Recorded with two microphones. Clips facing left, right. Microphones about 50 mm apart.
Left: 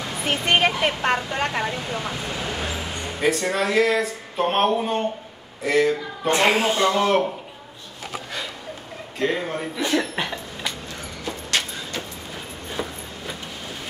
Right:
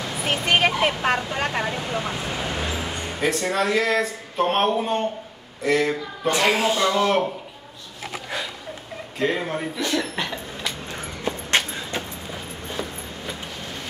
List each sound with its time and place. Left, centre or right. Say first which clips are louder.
0.2 s speech: even; centre
3.1 s speech: left 2 dB; centre
6.2 s speech: left 1 dB; left
7.1 s speech: left 1 dB; centre
9.2 s speech: even; centre
9.8 s speech: left 4 dB; centre
10.9 s a sound: right 3 dB; right
12.8 s a sound: left 2 dB; centre